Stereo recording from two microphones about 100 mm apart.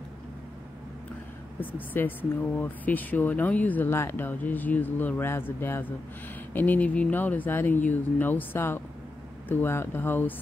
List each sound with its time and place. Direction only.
1.6 s speech: 20° left (ahead or behind)